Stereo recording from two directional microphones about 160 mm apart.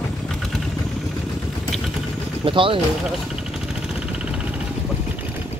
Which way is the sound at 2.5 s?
35° right (ahead or behind).